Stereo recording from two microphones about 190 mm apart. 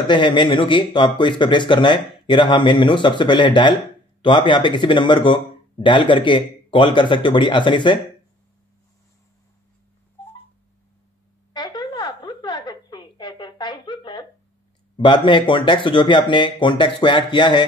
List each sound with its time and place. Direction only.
0.0 s speech: 25° left (ahead or behind)
11.5 s a sound: 20° left (ahead or behind)
15.0 s speech: 25° left (ahead or behind)